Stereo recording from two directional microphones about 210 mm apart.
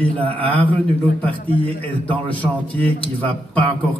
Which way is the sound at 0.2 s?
25° right (ahead or behind).